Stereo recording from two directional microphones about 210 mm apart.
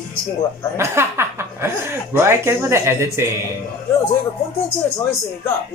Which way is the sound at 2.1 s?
10° right (ahead or behind).